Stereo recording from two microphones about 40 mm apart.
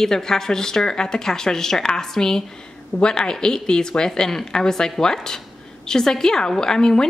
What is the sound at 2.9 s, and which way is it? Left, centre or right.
A woman's voice, left.